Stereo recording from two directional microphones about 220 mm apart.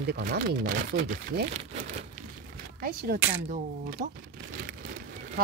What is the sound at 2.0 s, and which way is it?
Crumpling, 40° right (ahead or behind).